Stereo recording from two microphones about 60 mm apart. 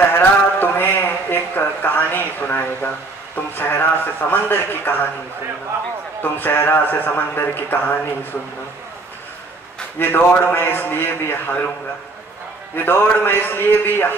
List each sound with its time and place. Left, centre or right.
0.1 s a man's voice: left
6.2 s speech: left
9.9 s speech: left
12.7 s speech: left